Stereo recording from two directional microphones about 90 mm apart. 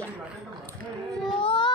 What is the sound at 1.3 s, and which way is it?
Child singing, 75° left (ahead or behind).